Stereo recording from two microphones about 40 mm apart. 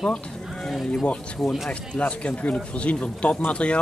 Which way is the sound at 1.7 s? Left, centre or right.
Left.